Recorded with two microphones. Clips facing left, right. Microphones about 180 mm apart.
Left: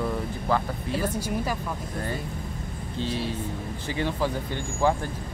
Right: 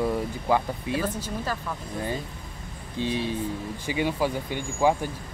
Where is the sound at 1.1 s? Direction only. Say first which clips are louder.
Left 3 dB; 10° left (ahead or behind).